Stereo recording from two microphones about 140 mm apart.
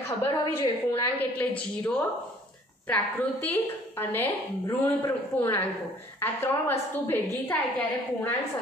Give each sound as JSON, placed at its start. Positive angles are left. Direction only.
{"t": 0.0, "sound": "a woman's voice", "side_deg": 15}